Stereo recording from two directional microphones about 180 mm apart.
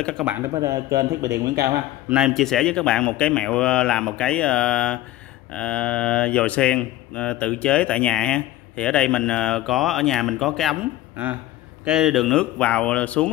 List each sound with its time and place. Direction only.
0.6 s speech: 15° right (ahead or behind)
2.0 s speech: 5° right (ahead or behind)
11.8 s speech: 5° right (ahead or behind)